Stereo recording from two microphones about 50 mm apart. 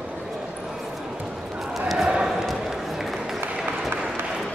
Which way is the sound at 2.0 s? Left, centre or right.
Centre.